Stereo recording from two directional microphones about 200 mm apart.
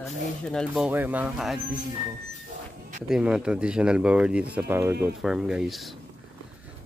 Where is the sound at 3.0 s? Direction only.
5° right (ahead or behind).